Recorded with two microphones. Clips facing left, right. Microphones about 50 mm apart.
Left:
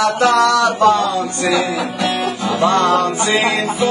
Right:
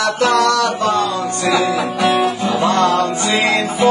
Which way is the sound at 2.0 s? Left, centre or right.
Centre.